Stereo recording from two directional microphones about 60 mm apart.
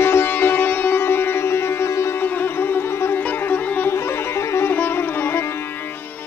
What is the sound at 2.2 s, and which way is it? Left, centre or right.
Sitar, left.